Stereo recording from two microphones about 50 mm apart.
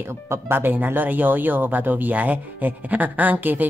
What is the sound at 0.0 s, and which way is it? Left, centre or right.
Speech, right.